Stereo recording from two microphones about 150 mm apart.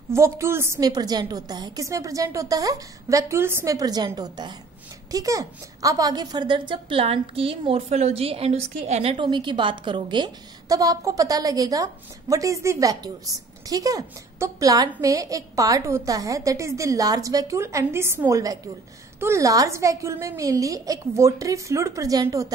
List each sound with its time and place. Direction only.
0.1 s a woman's voice: 20° right (ahead or behind); by 9.2 s 50° right (ahead or behind)
9.2 s a woman's voice: 30° right (ahead or behind)